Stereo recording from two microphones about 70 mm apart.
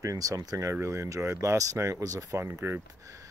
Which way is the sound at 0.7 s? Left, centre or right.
Right.